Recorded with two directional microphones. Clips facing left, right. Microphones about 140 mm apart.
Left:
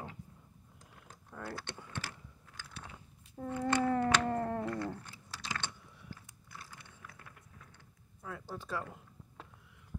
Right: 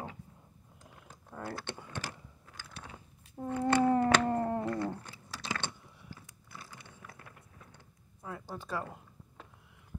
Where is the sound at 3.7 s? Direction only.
25° right (ahead or behind).